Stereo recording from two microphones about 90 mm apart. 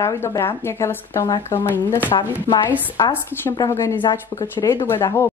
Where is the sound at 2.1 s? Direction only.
85° left.